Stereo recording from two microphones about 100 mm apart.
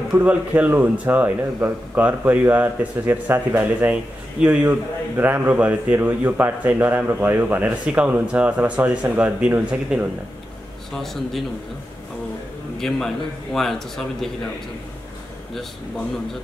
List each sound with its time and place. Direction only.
0.2 s speech: 15° right (ahead or behind)
10.9 s a man's voice: 5° left (ahead or behind)
12.7 s a man's voice: 5° left (ahead or behind)